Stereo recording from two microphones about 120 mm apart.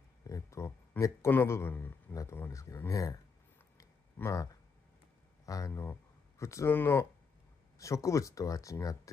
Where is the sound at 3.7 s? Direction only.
25° left (ahead or behind).